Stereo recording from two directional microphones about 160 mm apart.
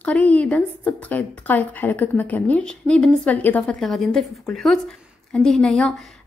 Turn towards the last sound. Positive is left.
turn(degrees=5)  # may be behind; listen again after turning